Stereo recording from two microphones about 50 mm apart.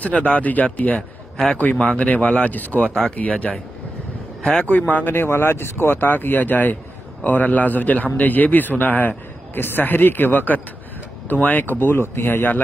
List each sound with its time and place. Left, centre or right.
0.0 s a man's voice: left
4.4 s speech: centre
4.6 s a man's voice: left